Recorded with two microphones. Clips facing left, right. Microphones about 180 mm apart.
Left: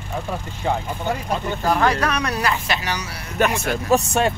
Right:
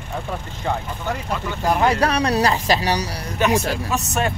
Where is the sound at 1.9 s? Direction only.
35° right (ahead or behind).